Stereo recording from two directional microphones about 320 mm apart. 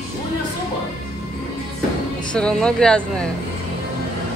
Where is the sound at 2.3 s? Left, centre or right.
Centre.